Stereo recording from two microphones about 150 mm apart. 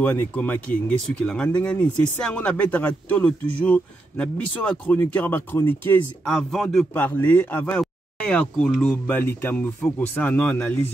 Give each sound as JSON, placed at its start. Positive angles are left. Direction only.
{"t": 0.0, "sound": "speech", "side_deg": 10}
{"t": 6.2, "sound": "speech", "side_deg": 5}
{"t": 7.0, "sound": "speech", "side_deg": 10}